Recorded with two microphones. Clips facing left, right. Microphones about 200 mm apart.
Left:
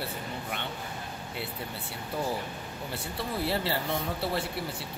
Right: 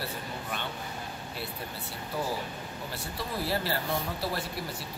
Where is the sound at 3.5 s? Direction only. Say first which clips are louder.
Right 2 dB; 25° left (ahead or behind).